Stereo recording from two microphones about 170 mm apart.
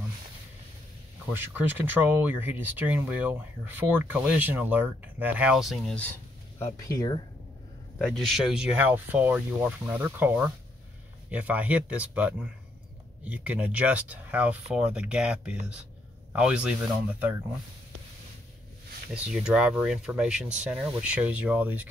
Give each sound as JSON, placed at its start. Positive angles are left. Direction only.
{"t": 1.3, "sound": "speech", "side_deg": -10}
{"t": 6.6, "sound": "speech", "side_deg": 20}
{"t": 8.0, "sound": "speech", "side_deg": 0}
{"t": 19.1, "sound": "speech", "side_deg": -5}